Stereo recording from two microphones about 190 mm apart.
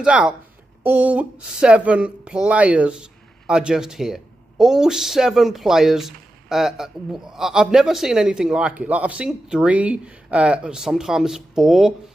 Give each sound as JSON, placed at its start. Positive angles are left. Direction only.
{"t": 0.0, "sound": "speech", "side_deg": -5}